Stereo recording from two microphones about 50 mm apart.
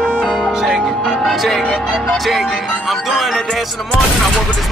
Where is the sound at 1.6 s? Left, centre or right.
Centre.